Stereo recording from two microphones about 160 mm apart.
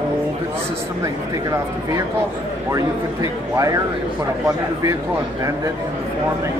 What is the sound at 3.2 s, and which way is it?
Speech, 20° right (ahead or behind).